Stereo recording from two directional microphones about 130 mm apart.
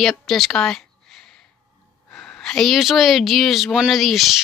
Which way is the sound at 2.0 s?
5° left (ahead or behind).